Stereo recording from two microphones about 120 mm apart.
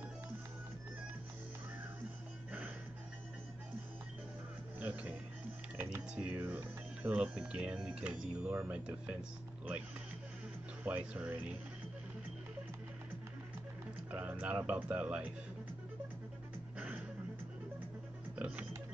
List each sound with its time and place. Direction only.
4.7 s speech: 15° right (ahead or behind)
5.8 s typing: 20° right (ahead or behind)
6.1 s speech: 15° right (ahead or behind)
10.8 s speech: 15° right (ahead or behind)
14.1 s speech: 15° right (ahead or behind)
16.7 s music: 10° right (ahead or behind)
18.3 s music: 10° right (ahead or behind)